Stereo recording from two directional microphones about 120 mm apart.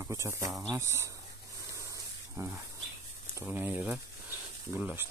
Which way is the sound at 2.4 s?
25° right (ahead or behind).